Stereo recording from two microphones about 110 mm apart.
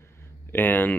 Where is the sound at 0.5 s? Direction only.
15° left (ahead or behind).